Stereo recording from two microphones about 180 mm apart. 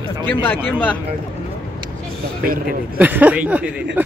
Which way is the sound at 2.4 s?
55° right (ahead or behind).